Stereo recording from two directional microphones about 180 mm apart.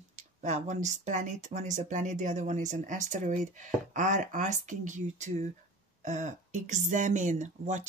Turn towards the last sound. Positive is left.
turn(degrees=-40)  # may be behind; listen again after turning